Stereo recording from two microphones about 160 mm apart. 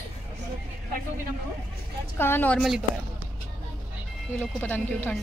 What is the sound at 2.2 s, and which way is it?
Speech, 10° left (ahead or behind).